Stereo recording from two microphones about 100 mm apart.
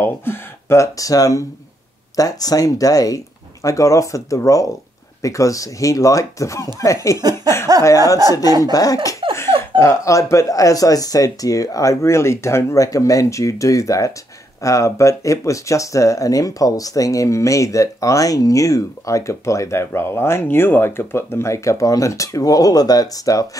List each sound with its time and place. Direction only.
0.0 s speech: 20° left (ahead or behind)
7.7 s a sound: 40° right (ahead or behind)
8.5 s speech: 40° right (ahead or behind)
8.7 s speech: 35° left (ahead or behind)